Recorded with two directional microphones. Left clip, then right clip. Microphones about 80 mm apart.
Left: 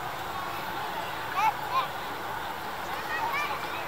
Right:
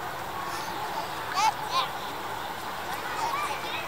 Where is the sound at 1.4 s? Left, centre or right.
Right.